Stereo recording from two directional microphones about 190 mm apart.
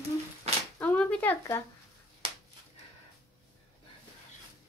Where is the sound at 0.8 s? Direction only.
5° left (ahead or behind).